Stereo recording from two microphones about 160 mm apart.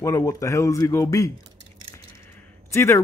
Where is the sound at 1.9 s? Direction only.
15° left (ahead or behind).